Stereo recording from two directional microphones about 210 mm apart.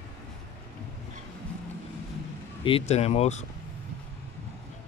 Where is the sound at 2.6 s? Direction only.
30° left (ahead or behind).